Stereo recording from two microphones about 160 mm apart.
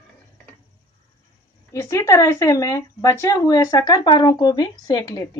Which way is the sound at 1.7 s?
20° left (ahead or behind).